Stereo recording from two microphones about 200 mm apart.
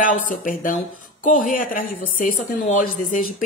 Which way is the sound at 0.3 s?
45° left (ahead or behind).